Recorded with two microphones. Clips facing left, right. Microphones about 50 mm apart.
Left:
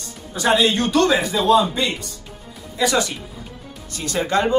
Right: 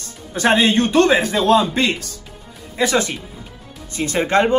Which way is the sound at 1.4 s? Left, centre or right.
Right.